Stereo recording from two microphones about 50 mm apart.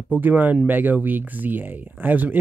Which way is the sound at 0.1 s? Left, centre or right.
Right.